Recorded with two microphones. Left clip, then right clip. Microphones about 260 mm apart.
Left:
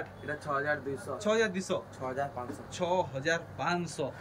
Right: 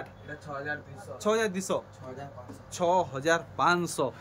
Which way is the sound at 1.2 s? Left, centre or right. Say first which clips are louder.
Right 2 dB; centre.